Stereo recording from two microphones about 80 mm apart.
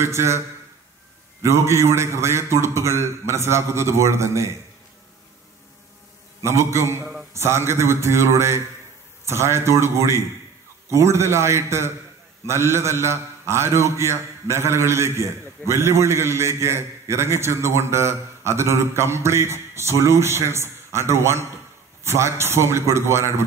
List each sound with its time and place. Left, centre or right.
0.0 s a man's voice: right
1.4 s a man's voice: right
6.4 s a man's voice: right